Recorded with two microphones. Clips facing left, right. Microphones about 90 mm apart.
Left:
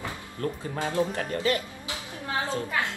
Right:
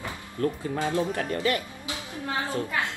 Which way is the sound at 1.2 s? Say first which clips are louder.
Right 1 dB; 35° left (ahead or behind).